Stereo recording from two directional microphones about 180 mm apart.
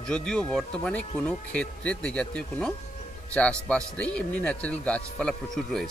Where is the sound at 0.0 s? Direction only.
5° left (ahead or behind).